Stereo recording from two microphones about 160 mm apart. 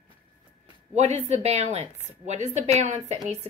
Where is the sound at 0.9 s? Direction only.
45° right (ahead or behind).